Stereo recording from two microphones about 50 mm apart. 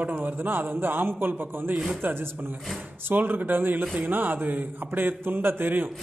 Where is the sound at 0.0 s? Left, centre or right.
Right.